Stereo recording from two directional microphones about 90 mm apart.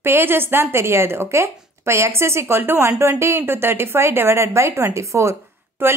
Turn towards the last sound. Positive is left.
turn(degrees=-30)  # may be behind; listen again after turning